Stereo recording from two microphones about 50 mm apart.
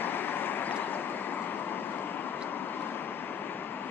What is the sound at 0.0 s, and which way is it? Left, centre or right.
Vehicle, left.